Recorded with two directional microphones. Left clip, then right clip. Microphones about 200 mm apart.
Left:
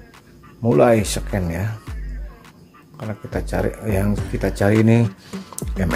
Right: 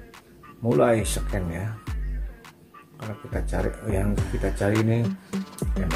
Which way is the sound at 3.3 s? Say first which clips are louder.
Left 6 dB; 25° left (ahead or behind).